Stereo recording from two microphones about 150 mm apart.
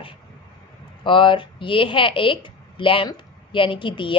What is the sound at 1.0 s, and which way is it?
A woman's voice, 35° left (ahead or behind).